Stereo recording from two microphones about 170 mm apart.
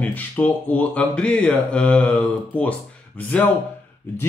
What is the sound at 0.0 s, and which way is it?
Speech, 10° left (ahead or behind).